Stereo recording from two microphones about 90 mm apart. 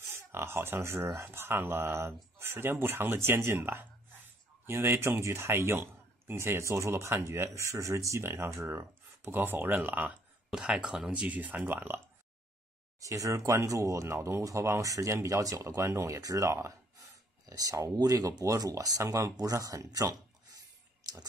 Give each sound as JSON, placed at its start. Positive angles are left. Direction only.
{"t": 0.1, "sound": "speech", "side_deg": -25}
{"t": 13.0, "sound": "speech", "side_deg": -35}
{"t": 21.0, "sound": "a sound", "side_deg": -50}